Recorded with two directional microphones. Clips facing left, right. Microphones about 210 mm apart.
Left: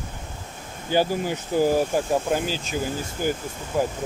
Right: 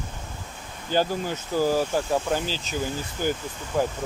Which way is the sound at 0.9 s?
10° left (ahead or behind).